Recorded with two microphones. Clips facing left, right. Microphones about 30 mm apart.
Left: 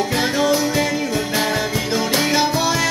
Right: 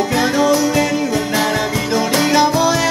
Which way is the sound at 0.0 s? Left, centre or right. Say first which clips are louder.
Right 3 dB; centre.